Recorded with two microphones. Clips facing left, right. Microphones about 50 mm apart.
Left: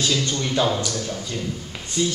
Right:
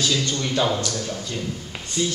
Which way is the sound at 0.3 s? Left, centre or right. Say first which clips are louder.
Left 1 dB; centre.